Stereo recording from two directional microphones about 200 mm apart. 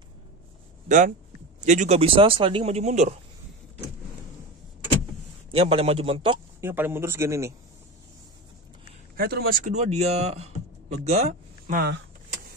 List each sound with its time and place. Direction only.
0.8 s speech: 40° right (ahead or behind)
5.5 s a man's voice: 30° right (ahead or behind)
6.6 s speech: 10° right (ahead or behind)
9.1 s speech: 50° right (ahead or behind)